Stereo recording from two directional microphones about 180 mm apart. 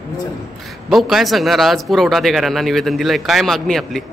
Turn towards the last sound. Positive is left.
turn(degrees=0)  # may be behind; listen again after turning